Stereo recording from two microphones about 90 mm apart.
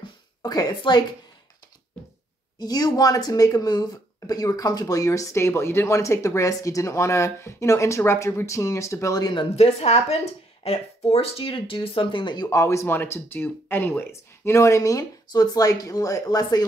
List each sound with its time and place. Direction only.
0.4 s a woman's voice: 45° left (ahead or behind)
2.6 s speech: 45° left (ahead or behind)
9.2 s speech: 65° left (ahead or behind)
11.1 s speech: 90° left; by 12.4 s 65° left (ahead or behind)
12.4 s speech: 35° left (ahead or behind)